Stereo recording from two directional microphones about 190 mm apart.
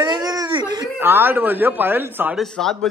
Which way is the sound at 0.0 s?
20° right (ahead or behind).